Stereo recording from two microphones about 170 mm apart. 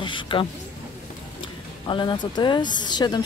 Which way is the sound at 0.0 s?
30° left (ahead or behind).